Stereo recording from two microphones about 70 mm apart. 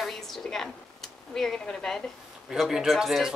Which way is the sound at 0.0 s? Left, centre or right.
Centre.